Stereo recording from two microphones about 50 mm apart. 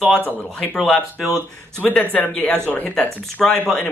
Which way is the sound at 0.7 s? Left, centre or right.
Centre.